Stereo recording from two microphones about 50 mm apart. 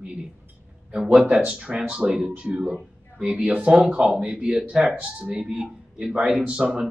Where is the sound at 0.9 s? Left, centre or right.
Centre.